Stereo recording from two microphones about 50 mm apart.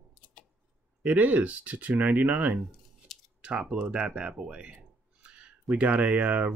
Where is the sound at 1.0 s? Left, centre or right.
Right.